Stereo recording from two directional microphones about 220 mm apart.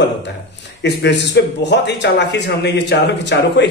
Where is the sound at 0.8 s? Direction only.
50° left (ahead or behind).